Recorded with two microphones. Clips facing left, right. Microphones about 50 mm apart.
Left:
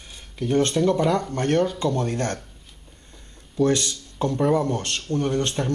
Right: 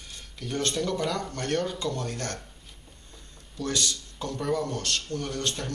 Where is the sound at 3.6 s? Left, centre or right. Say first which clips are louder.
Left 9 dB; left.